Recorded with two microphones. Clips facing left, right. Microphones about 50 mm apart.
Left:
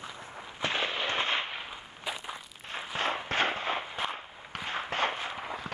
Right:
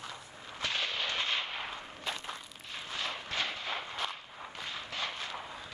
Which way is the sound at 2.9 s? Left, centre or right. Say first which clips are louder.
Left 7 dB; left.